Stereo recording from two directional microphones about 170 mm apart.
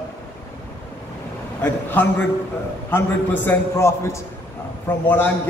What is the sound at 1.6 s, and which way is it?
Speech, 10° left (ahead or behind).